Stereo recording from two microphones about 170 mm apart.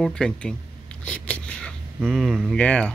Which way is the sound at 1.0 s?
5° left (ahead or behind).